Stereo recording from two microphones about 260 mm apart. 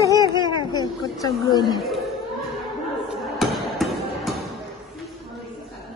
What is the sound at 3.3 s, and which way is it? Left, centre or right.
Music, centre.